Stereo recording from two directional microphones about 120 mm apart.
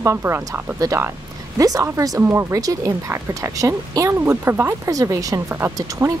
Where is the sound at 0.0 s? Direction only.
20° right (ahead or behind).